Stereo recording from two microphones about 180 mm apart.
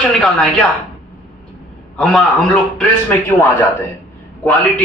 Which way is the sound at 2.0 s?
5° left (ahead or behind).